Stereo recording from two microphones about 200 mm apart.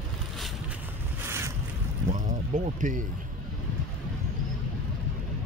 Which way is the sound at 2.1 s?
40° right (ahead or behind).